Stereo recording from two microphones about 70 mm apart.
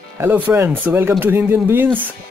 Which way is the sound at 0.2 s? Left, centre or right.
Right.